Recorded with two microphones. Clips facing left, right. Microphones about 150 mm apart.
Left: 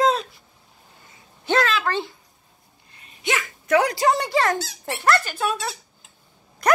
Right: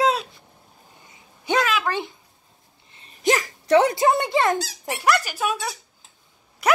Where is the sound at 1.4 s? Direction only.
15° right (ahead or behind).